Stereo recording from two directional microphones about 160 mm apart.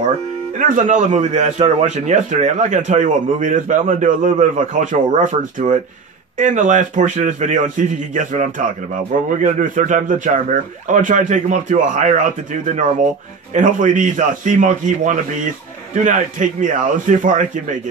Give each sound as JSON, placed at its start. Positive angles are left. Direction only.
{"t": 0.6, "sound": "a man's voice", "side_deg": -55}
{"t": 13.6, "sound": "a man's voice", "side_deg": -55}